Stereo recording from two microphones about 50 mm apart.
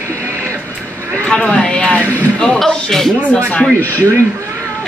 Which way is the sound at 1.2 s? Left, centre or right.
Centre.